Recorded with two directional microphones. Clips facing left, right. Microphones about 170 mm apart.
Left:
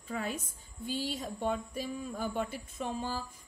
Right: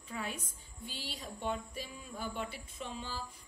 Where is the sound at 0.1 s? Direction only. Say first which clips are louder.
Left 5 dB; 40° left (ahead or behind).